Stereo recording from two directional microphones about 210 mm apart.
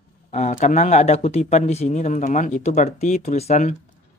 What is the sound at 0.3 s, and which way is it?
Speech, 35° left (ahead or behind).